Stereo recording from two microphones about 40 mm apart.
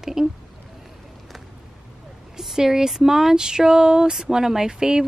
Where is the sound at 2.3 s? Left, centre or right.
Centre.